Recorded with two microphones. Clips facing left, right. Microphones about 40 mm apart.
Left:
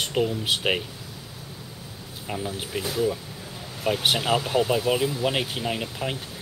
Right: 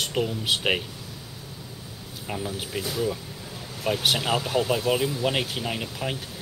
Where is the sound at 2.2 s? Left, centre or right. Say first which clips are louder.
Left 1 dB; centre.